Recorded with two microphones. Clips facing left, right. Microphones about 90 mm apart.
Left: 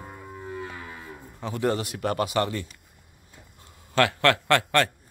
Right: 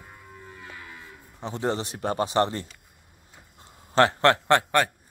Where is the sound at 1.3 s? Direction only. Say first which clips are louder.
Left 2 dB; 25° right (ahead or behind).